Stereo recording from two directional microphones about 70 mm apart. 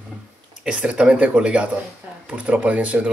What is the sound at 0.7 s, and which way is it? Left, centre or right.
Speech, centre.